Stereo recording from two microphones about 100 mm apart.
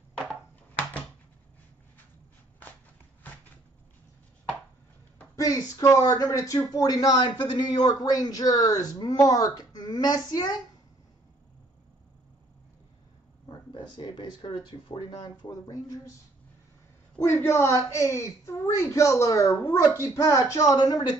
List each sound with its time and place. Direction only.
5.3 s speech: 35° left (ahead or behind)
13.5 s speech: 50° left (ahead or behind); by 16.0 s 35° left (ahead or behind)
17.2 s a woman's voice: 30° left (ahead or behind)